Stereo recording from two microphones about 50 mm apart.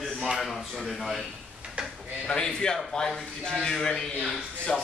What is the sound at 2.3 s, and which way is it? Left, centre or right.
A man's voice, centre.